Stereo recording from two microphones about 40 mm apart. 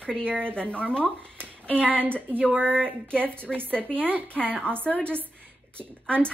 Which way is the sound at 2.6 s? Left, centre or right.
Left.